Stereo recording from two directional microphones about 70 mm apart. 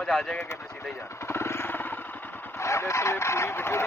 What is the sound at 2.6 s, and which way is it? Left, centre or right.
Speech, left.